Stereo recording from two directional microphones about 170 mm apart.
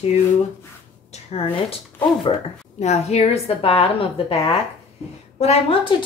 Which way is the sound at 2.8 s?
40° left (ahead or behind).